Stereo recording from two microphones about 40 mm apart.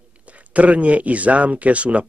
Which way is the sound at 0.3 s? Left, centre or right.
Right.